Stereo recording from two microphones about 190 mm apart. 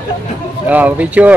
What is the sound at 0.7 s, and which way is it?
Speech, 10° right (ahead or behind).